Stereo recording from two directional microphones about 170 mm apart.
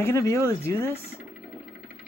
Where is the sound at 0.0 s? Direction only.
15° left (ahead or behind).